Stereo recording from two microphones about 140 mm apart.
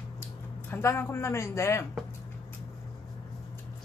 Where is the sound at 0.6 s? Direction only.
15° left (ahead or behind).